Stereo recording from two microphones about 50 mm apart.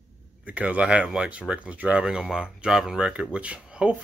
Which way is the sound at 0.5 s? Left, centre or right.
Right.